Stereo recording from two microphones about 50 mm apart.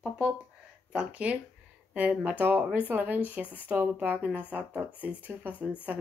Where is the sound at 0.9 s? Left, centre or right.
Right.